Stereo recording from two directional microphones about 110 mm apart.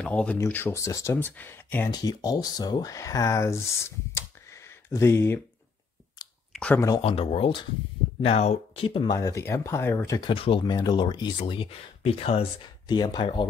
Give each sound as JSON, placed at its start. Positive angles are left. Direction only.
{"t": 0.0, "sound": "speech", "side_deg": 10}
{"t": 1.9, "sound": "speech", "side_deg": 35}
{"t": 6.2, "sound": "clicking", "side_deg": 35}
{"t": 6.5, "sound": "a sound", "side_deg": 10}
{"t": 7.0, "sound": "speech", "side_deg": 60}
{"t": 8.2, "sound": "speech", "side_deg": 75}
{"t": 8.8, "sound": "speech", "side_deg": 55}
{"t": 9.1, "sound": "speech", "side_deg": 30}
{"t": 10.2, "sound": "speech", "side_deg": 55}
{"t": 10.6, "sound": "speech", "side_deg": 40}
{"t": 12.6, "sound": "speech", "side_deg": 40}